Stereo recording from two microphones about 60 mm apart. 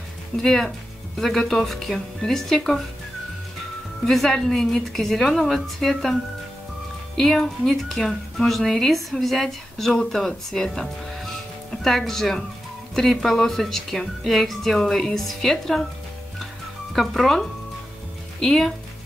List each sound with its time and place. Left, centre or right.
0.4 s a woman's voice: centre
4.0 s a woman's voice: centre
7.2 s a woman's voice: centre
16.9 s a woman's voice: centre